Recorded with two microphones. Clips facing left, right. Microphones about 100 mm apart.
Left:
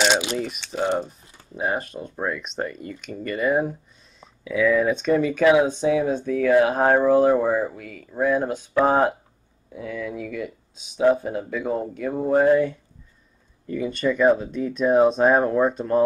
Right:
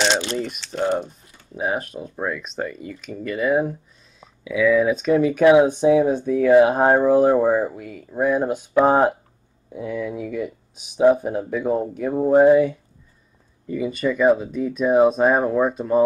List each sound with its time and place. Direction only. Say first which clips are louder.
0.0 s speech: even; 5° left (ahead or behind)
5.2 s speech: right 5 dB; 15° right (ahead or behind)
11.6 s speech: right 4 dB; 5° right (ahead or behind)
11.9 s speech: right 4 dB; 20° right (ahead or behind); by 16.0 s 5° right (ahead or behind)